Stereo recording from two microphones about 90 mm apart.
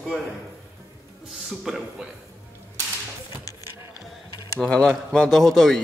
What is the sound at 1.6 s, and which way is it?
Speech, 5° right (ahead or behind).